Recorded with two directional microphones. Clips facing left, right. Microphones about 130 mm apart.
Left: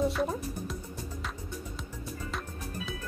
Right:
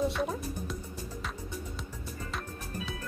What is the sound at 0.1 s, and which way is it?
Speech, centre (ahead or behind).